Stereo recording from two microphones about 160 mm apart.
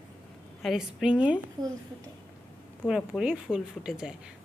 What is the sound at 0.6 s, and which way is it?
Speech, 5° right (ahead or behind).